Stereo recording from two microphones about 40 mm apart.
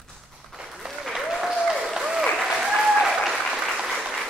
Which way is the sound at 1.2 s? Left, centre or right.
Centre.